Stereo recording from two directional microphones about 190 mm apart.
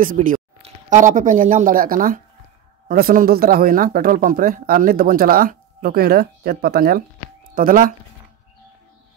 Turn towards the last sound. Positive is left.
turn(degrees=-45)  # may be behind; listen again after turning